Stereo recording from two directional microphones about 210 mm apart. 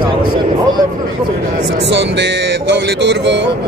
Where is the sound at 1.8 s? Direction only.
55° right (ahead or behind).